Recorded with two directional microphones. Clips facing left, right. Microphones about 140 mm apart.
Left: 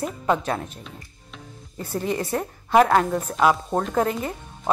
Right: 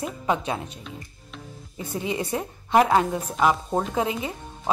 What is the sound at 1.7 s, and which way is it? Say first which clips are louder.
Speech: left 2 dB; 5° right (ahead or behind).